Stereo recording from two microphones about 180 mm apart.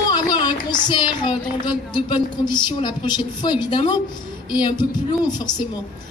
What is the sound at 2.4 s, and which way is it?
Speech, 25° left (ahead or behind).